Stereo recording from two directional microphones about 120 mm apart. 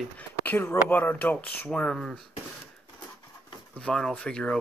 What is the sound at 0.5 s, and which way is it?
Speech, 15° left (ahead or behind).